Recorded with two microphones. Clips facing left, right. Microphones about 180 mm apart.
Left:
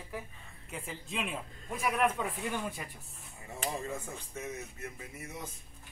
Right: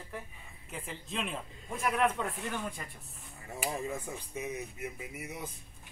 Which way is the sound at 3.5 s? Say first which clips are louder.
Right 1 dB; 10° right (ahead or behind).